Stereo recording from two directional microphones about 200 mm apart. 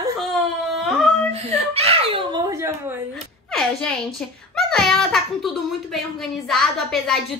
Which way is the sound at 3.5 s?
Centre (ahead or behind).